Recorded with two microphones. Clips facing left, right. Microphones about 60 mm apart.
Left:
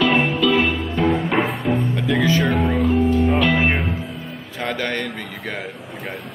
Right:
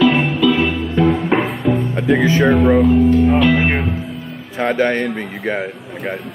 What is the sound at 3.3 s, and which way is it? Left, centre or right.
Music, centre.